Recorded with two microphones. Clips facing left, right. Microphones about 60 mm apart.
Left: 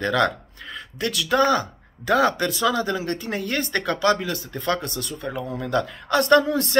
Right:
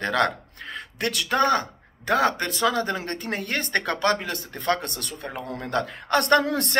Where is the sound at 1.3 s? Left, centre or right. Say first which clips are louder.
Left 2 dB; right.